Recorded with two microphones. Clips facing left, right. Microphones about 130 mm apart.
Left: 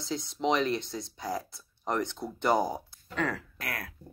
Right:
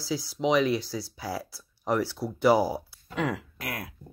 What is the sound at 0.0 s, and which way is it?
Speech, 5° right (ahead or behind).